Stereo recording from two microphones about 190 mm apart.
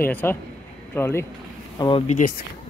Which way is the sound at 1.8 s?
30° left (ahead or behind).